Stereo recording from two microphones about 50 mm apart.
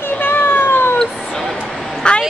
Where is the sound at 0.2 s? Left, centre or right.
Left.